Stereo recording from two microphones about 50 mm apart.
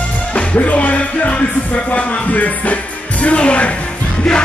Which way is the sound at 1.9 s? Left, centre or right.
Left.